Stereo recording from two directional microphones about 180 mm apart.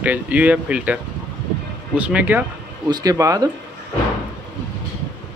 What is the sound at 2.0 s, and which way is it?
Speech, 5° right (ahead or behind).